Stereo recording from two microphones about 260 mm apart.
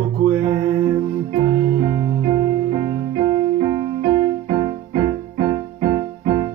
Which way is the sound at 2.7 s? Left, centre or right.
Centre.